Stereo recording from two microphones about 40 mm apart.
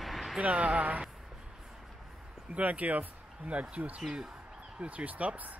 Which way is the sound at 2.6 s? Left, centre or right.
Right.